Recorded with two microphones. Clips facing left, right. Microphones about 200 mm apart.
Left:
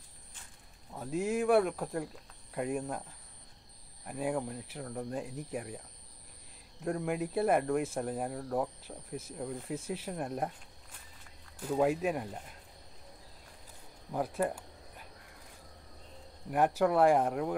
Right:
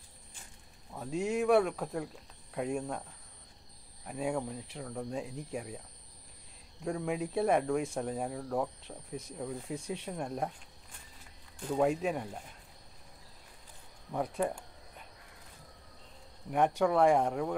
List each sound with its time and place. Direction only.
0.9 s speech: centre (ahead or behind)
11.6 s speech: 5° left (ahead or behind)
14.1 s cricket: centre (ahead or behind)
16.4 s speech: 5° left (ahead or behind)